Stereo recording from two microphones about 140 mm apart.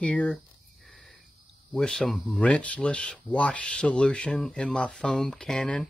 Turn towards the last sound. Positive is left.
turn(degrees=5)  # may be behind; listen again after turning